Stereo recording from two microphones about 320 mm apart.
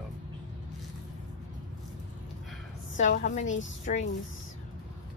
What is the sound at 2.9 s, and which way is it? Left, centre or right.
A woman's voice, left.